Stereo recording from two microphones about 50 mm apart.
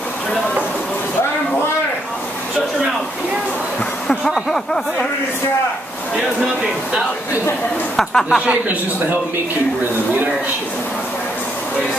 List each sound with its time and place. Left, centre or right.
8.0 s speech: centre
8.4 s a woman's voice: right